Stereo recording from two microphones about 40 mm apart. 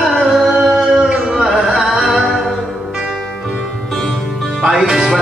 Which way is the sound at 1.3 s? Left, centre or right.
Centre.